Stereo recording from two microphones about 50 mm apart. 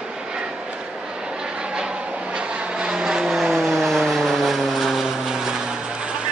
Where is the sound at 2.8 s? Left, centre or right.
Centre.